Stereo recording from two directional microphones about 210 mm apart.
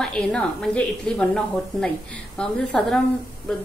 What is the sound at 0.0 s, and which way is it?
A woman's voice, 5° left (ahead or behind).